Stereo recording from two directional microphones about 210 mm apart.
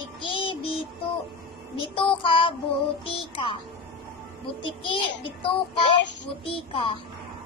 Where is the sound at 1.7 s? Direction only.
25° left (ahead or behind).